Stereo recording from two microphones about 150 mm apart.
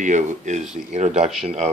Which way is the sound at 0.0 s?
55° right (ahead or behind).